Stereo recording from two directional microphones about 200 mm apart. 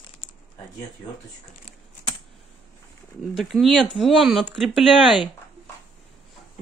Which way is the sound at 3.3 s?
Centre (ahead or behind).